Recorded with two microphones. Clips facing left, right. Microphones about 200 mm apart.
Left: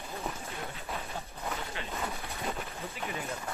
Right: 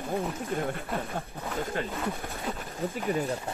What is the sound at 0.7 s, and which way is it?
Speech, 50° right (ahead or behind).